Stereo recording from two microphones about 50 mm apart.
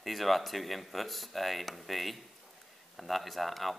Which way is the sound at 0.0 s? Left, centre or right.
Centre.